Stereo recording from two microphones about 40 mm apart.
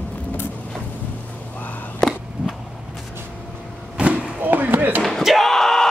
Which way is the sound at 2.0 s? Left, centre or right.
Centre.